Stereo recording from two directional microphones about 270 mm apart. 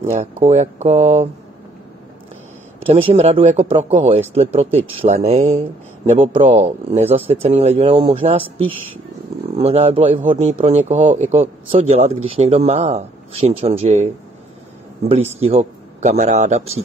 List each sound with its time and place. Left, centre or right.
0.4 s speech: right
2.9 s speech: right
15.0 s speech: right